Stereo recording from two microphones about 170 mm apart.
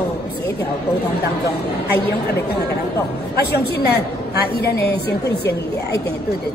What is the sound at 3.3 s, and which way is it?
A woman's voice, 70° left (ahead or behind).